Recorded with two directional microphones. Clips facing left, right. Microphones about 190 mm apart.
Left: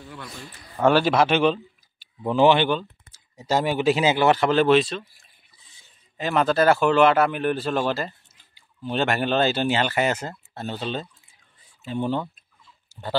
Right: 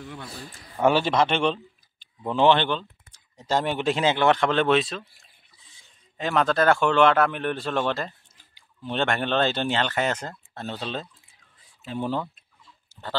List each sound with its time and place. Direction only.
0.2 s a man's voice: 35° right (ahead or behind)
0.9 s speech: 5° left (ahead or behind)